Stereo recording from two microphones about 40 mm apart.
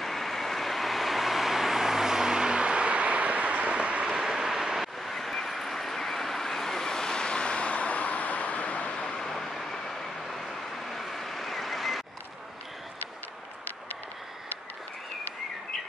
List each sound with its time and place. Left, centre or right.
0.0 s vehicle: centre; by 4.1 s right
4.1 s vehicle: centre
5.1 s vehicle: centre; by 8.9 s left
8.9 s vehicle: centre